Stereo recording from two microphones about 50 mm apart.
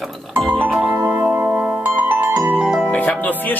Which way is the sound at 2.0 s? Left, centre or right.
Right.